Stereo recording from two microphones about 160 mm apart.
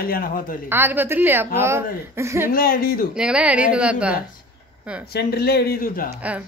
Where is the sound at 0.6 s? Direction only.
15° right (ahead or behind).